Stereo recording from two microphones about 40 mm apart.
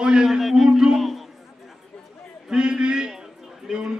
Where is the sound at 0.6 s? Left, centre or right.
Centre.